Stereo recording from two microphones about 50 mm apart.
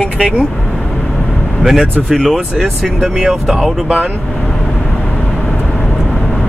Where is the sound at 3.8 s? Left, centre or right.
Right.